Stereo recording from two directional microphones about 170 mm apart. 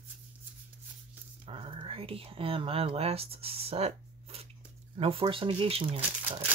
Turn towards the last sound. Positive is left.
turn(degrees=-35)  # may be behind; listen again after turning